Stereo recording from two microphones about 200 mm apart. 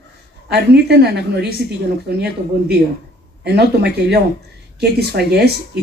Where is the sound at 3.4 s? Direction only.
55° right (ahead or behind).